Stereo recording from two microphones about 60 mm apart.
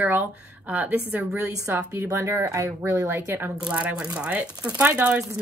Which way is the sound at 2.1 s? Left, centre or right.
Right.